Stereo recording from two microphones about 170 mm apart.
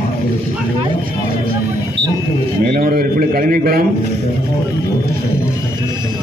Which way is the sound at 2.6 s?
60° right (ahead or behind).